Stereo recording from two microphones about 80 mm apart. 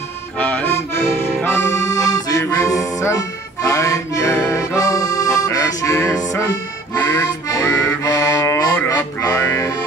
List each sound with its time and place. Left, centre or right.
0.4 s accordion: left
1.9 s accordion: left
2.4 s music: left
3.6 s accordion: left
7.4 s music: left
8.8 s speech: left